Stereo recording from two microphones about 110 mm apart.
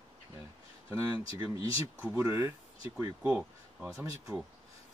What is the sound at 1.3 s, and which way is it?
Speech, 35° right (ahead or behind).